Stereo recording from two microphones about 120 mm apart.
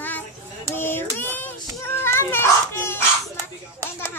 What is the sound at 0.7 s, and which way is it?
Child singing, 20° left (ahead or behind).